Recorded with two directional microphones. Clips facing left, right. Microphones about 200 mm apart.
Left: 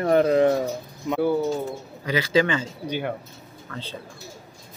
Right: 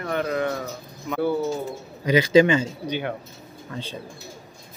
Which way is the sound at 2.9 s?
5° left (ahead or behind).